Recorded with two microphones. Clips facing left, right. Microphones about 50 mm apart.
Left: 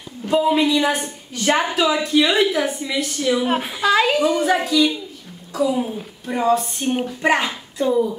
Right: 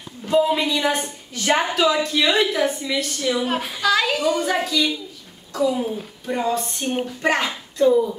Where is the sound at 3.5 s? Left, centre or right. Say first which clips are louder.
Left 2 dB; centre.